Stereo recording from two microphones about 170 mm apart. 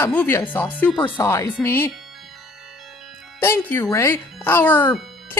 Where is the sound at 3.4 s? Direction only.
10° left (ahead or behind).